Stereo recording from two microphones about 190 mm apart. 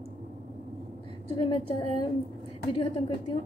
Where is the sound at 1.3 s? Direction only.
30° left (ahead or behind).